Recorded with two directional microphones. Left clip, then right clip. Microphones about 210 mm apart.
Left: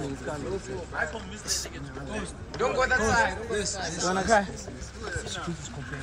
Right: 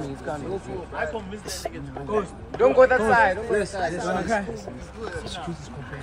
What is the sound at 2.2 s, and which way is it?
A man's voice, 45° right (ahead or behind).